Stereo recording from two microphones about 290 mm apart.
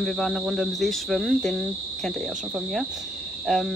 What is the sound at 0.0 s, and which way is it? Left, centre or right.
Speech, centre.